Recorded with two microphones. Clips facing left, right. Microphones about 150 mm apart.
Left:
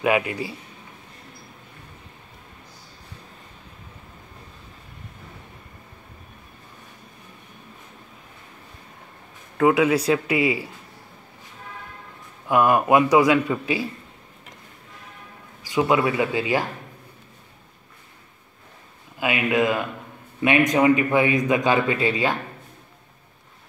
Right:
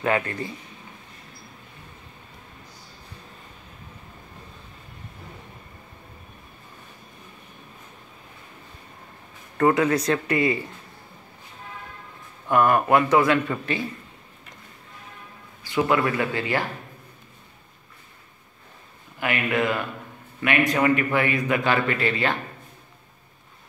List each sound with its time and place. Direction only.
0.0 s a man's voice: 10° left (ahead or behind)
9.6 s a man's voice: 5° left (ahead or behind)
12.4 s a man's voice: 10° left (ahead or behind)
15.6 s a man's voice: 15° left (ahead or behind)
19.1 s a man's voice: 15° left (ahead or behind)